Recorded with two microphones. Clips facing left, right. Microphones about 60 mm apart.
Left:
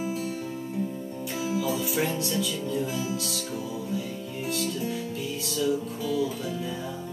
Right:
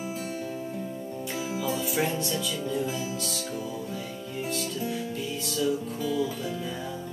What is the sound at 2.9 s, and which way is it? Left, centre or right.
Music, centre.